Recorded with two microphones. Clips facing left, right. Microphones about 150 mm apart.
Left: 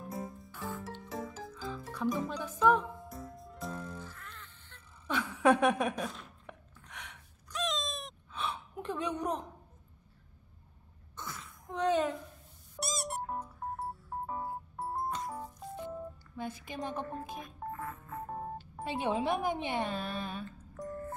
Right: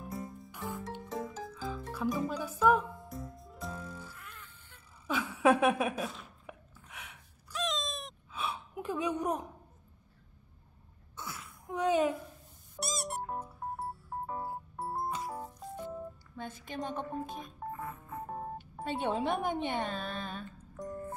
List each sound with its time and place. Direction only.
1.0 s music: 5° left (ahead or behind)
1.5 s music: 5° right (ahead or behind)
11.1 s a sound: 5° right (ahead or behind)
12.7 s music: centre (ahead or behind)
16.3 s speech: 5° left (ahead or behind)
17.6 s telephone dialing: 15° right (ahead or behind)
18.9 s speech: 5° left (ahead or behind)
20.8 s a sound: 15° right (ahead or behind)